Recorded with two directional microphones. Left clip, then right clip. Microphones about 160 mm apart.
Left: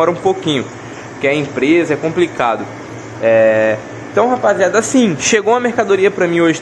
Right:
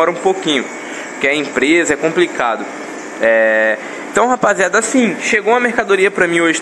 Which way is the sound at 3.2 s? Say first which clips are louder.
Left 1 dB; centre (ahead or behind).